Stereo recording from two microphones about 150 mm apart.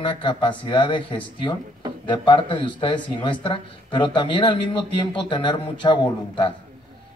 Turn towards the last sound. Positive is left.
turn(degrees=30)  # may be behind; listen again after turning